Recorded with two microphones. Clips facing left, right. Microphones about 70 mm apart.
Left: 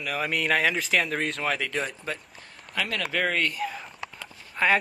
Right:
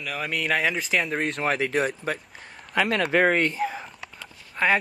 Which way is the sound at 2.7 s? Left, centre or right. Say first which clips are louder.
Right 7 dB; right.